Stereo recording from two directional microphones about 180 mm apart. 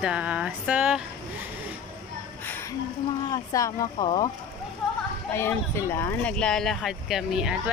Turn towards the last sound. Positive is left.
turn(degrees=0)  # may be behind; listen again after turning